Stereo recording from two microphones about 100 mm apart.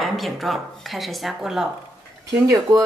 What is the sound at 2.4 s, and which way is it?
Speech, 30° right (ahead or behind).